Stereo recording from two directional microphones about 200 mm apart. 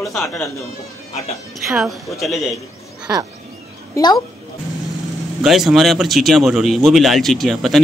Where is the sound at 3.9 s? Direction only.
15° left (ahead or behind).